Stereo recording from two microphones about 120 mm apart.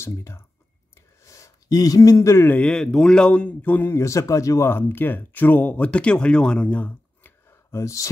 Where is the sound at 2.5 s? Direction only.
10° left (ahead or behind).